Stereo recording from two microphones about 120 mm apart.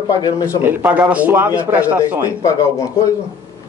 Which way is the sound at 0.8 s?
10° right (ahead or behind).